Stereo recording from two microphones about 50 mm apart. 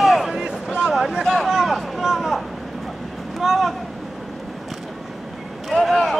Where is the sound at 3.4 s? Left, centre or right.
Centre.